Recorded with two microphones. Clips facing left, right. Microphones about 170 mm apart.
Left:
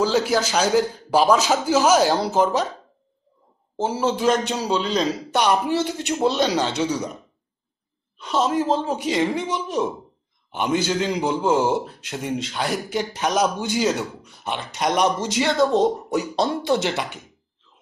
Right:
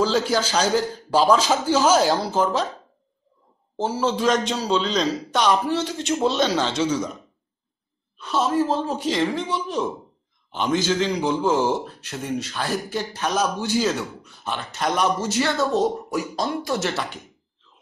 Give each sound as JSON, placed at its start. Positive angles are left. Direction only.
{"t": 0.0, "sound": "a man's voice", "side_deg": 10}
{"t": 3.8, "sound": "a man's voice", "side_deg": 10}
{"t": 8.2, "sound": "a man's voice", "side_deg": 15}